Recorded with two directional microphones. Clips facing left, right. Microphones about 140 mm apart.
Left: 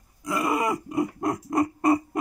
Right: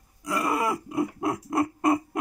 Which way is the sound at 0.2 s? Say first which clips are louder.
Left 1 dB; centre (ahead or behind).